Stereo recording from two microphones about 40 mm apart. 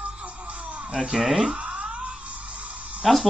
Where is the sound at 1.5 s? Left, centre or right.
Right.